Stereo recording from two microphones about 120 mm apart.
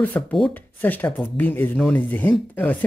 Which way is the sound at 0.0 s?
10° left (ahead or behind).